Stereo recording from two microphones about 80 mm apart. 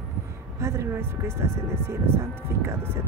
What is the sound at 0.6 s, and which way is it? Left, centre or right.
Speech, right.